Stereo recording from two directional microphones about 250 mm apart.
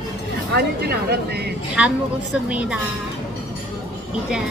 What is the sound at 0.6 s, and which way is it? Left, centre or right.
Speech, right.